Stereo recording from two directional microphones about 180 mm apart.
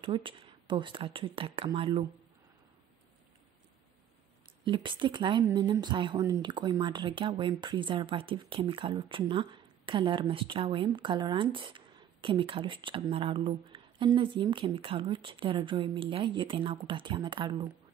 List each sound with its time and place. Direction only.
0.0 s a woman's voice: 30° right (ahead or behind)
4.6 s a woman's voice: 25° right (ahead or behind)